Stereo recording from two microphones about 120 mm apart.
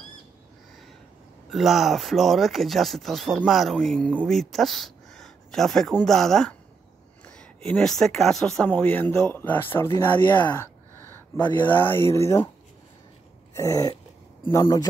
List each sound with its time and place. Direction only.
1.5 s speech: centre (ahead or behind)
8.6 s speech: 15° left (ahead or behind)
10.0 s a sound: 15° left (ahead or behind)
11.4 s speech: 15° left (ahead or behind)
13.6 s speech: 30° left (ahead or behind)